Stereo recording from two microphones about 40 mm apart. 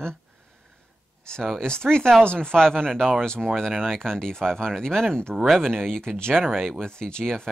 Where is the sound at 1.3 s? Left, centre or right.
Centre.